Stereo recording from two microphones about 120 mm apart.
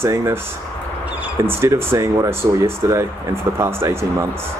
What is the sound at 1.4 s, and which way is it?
Speech, 20° right (ahead or behind).